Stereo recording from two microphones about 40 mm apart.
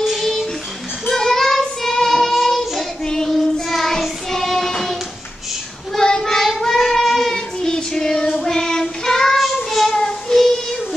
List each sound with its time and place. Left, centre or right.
0.2 s music: centre
1.0 s child singing: centre
5.9 s child singing: centre